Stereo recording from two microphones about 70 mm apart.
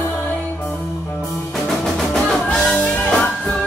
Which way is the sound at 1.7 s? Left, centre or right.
Centre.